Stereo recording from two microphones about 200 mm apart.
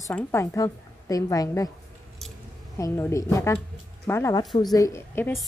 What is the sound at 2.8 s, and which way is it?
Speech, 15° left (ahead or behind).